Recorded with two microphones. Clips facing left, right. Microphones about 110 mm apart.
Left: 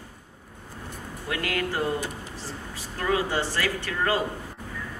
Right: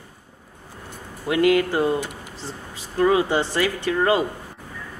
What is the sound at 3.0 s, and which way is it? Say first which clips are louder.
Speech: right 7 dB; 20° right (ahead or behind).